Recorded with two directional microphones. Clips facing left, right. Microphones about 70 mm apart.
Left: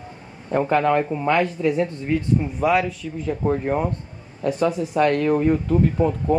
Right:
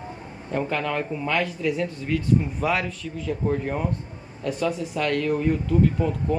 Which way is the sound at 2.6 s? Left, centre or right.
Centre.